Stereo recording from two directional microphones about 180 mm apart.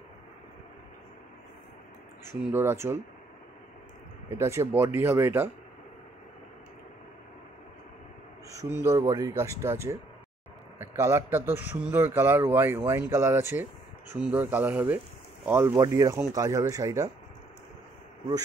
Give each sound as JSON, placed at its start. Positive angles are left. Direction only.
{"t": 2.2, "sound": "speech", "side_deg": -15}
{"t": 4.3, "sound": "speech", "side_deg": -15}
{"t": 8.5, "sound": "speech", "side_deg": -15}